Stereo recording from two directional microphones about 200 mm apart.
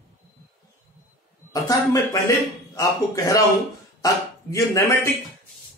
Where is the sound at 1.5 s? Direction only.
15° left (ahead or behind).